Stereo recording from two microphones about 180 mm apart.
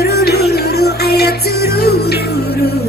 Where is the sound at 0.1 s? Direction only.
60° left (ahead or behind).